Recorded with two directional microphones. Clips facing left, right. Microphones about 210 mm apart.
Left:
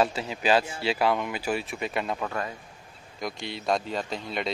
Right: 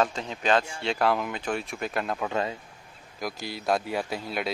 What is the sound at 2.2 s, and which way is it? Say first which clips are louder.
Speech: right 3 dB; 25° right (ahead or behind).